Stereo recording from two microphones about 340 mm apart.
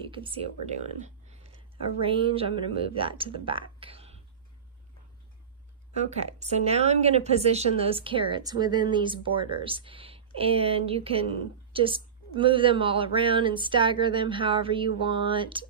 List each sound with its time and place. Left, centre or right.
0.0 s speech: centre
5.9 s speech: centre